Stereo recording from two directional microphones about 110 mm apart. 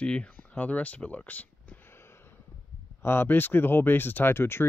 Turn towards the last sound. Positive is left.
turn(degrees=20)  # may be behind; listen again after turning